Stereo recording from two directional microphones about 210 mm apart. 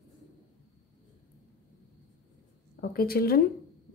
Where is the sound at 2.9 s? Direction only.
45° left (ahead or behind).